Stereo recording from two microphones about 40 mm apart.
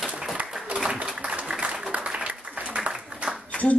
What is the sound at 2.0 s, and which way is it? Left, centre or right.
Applause, right.